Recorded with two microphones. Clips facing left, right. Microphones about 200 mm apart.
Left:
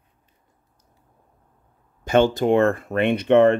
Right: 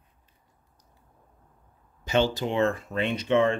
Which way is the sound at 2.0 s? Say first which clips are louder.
Left 7 dB; 55° left (ahead or behind).